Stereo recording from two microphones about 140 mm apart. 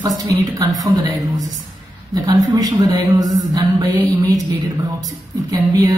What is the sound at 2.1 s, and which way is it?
Speech, 25° right (ahead or behind).